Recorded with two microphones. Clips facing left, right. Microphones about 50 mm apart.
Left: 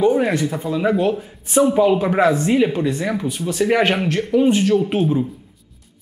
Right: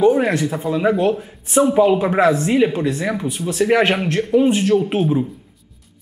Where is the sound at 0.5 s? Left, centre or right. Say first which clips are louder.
Right 1 dB; centre.